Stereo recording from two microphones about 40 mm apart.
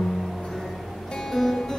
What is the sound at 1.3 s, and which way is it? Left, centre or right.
Music, centre.